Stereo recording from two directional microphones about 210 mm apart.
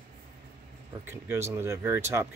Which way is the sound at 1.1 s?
10° right (ahead or behind).